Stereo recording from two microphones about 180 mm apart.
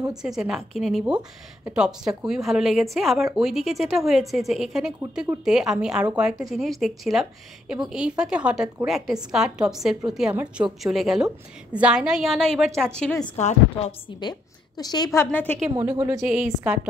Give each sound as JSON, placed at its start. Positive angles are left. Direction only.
{"t": 0.4, "sound": "a woman's voice", "side_deg": 0}
{"t": 13.4, "sound": "speech", "side_deg": 40}
{"t": 14.8, "sound": "a woman's voice", "side_deg": 20}
{"t": 15.2, "sound": "a woman's voice", "side_deg": 10}
{"t": 15.7, "sound": "a woman's voice", "side_deg": -20}
{"t": 16.2, "sound": "a woman's voice", "side_deg": -5}